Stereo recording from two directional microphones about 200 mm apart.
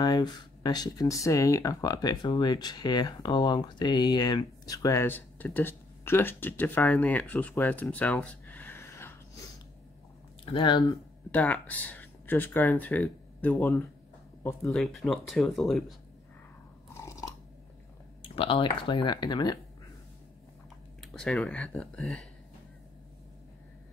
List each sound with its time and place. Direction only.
0.0 s speech: 20° left (ahead or behind)
10.4 s speech: 25° left (ahead or behind)
11.3 s speech: 5° left (ahead or behind)
16.9 s chewing: 15° left (ahead or behind)
18.2 s speech: 25° left (ahead or behind)
21.0 s speech: centre (ahead or behind)